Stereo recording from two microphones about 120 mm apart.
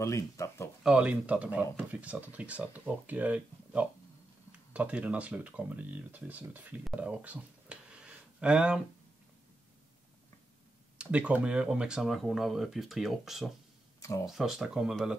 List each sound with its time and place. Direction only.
0.0 s a sound: 25° left (ahead or behind)
0.8 s speech: 10° right (ahead or behind)
11.0 s speech: 10° right (ahead or behind)